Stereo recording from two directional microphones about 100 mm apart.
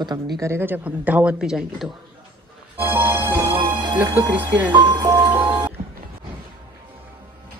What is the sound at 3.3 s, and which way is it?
Music, 60° right (ahead or behind).